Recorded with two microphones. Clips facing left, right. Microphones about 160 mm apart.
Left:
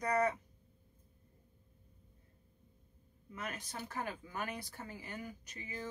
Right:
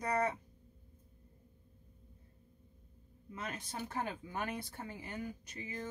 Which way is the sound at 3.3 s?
25° right (ahead or behind).